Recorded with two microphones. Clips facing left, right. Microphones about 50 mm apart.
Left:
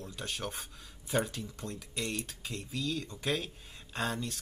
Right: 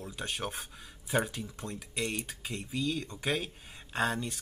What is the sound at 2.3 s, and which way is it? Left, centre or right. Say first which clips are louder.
Speech: right 2 dB; centre.